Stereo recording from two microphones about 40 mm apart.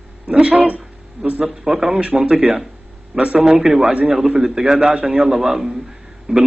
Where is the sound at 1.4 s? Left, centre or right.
Centre.